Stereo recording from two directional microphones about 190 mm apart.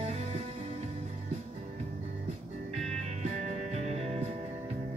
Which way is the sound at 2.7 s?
35° right (ahead or behind).